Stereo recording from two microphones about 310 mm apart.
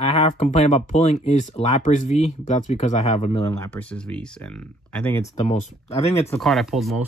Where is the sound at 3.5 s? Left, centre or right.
Centre.